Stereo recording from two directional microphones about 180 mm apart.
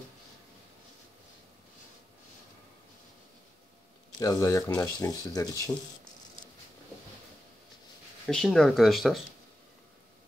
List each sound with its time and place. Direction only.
4.2 s speech: 20° left (ahead or behind)
8.3 s speech: centre (ahead or behind)